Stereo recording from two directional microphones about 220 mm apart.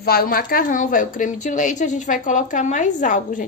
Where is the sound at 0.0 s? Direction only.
40° left (ahead or behind).